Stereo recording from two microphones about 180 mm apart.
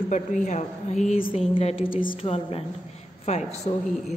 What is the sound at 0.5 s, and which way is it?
A woman's voice, 40° left (ahead or behind).